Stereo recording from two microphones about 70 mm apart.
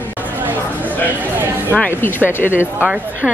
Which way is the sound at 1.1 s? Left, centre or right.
Right.